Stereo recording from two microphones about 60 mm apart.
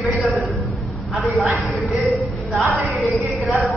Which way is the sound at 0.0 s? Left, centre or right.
Centre.